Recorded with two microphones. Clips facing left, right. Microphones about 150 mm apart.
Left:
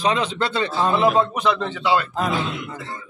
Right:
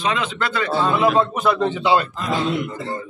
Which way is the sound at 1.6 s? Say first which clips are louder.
Right 3 dB; 20° right (ahead or behind).